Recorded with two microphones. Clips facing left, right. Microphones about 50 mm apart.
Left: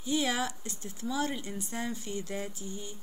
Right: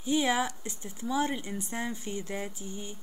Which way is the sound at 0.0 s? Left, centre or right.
Right.